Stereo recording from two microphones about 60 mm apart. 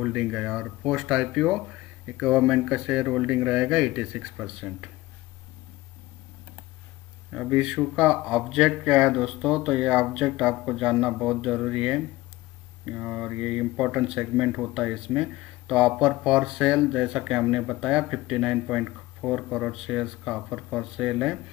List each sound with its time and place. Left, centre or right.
0.3 s speech: centre
7.3 s speech: centre
9.1 s speech: centre